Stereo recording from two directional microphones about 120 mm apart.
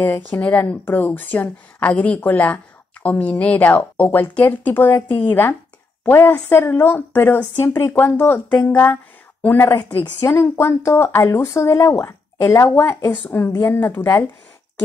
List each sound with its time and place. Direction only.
0.3 s a woman's voice: 15° left (ahead or behind)